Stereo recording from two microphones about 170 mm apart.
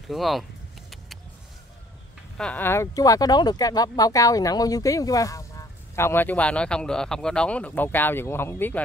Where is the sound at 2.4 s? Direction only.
10° left (ahead or behind).